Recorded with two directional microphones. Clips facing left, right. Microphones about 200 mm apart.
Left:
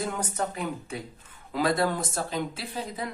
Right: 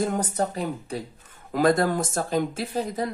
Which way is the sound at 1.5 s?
45° right (ahead or behind).